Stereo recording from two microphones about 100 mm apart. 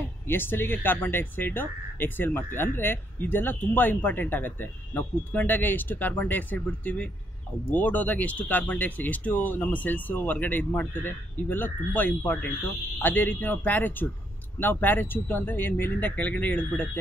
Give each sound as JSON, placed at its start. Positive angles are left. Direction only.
{"t": 0.3, "sound": "speech", "side_deg": 20}